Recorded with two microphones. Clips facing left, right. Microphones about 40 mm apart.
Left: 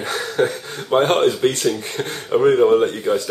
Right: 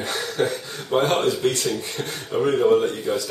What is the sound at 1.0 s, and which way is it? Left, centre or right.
Speech, left.